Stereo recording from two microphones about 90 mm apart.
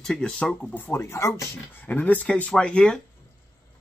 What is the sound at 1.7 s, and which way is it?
Speech, 20° left (ahead or behind).